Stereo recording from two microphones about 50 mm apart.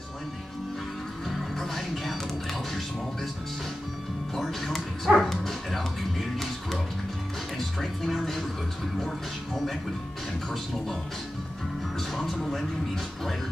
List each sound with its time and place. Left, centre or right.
1.3 s music: centre
4.4 s music: centre
12.2 s speech: centre